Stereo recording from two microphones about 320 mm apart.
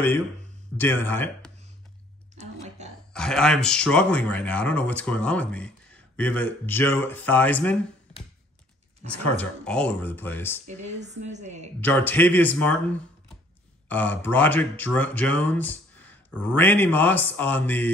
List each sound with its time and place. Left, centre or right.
0.7 s speech: centre
3.1 s speech: centre
9.4 s speech: centre
10.7 s a woman's voice: right
11.8 s speech: centre
13.8 s speech: centre